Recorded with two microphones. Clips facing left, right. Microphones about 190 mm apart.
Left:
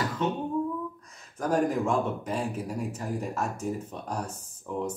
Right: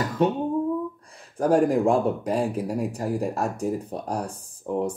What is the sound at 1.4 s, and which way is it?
Speech, 35° right (ahead or behind).